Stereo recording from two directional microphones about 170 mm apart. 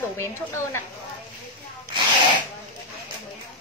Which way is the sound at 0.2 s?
15° left (ahead or behind).